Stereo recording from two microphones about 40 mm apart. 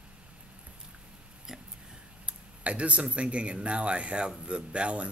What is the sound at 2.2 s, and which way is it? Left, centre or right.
Speech, right.